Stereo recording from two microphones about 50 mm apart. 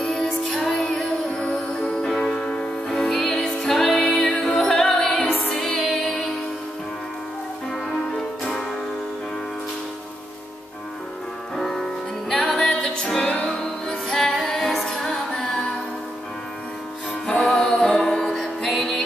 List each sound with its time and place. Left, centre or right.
0.0 s music: centre
2.9 s music: centre
5.3 s music: left
5.8 s music: centre
11.5 s music: centre
17.5 s music: centre